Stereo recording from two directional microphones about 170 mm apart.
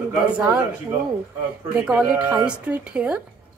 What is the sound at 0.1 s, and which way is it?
Speech, 10° right (ahead or behind).